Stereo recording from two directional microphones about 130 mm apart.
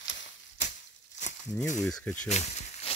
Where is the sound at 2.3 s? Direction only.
60° left (ahead or behind).